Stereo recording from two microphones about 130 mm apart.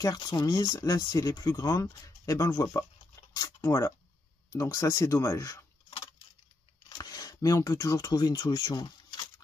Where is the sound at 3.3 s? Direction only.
25° left (ahead or behind).